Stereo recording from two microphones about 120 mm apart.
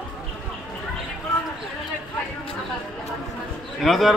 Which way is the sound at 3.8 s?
Centre (ahead or behind).